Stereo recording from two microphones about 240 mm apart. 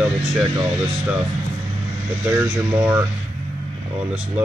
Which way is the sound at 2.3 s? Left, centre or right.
Centre.